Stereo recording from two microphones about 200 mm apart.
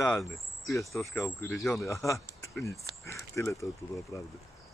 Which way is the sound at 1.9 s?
15° left (ahead or behind).